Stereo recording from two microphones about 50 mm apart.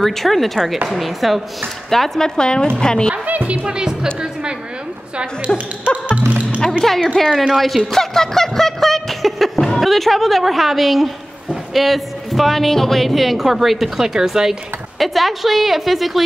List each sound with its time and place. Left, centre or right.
0.0 s a woman's voice: centre
3.1 s speech: right
3.6 s a woman's voice: centre
5.5 s speech: centre
6.1 s music: right
6.8 s speech: centre
7.2 s a sound: centre
9.8 s a woman's voice: centre
15.0 s a woman's voice: centre